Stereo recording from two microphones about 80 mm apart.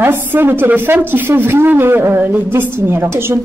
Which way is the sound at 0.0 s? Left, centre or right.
Right.